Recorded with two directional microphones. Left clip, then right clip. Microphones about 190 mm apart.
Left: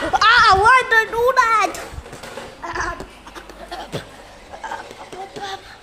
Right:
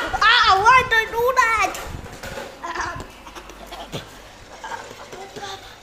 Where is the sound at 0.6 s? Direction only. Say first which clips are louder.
Left 2 dB; 20° left (ahead or behind).